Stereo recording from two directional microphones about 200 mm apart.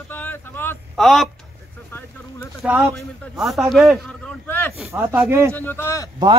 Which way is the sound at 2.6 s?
5° right (ahead or behind).